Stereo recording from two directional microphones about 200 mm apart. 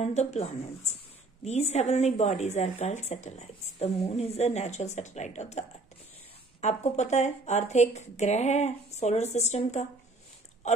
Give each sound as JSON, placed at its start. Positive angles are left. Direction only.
{"t": 0.0, "sound": "a woman's voice", "side_deg": 35}